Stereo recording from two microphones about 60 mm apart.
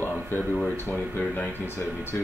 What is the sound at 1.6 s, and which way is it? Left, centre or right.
Speech, left.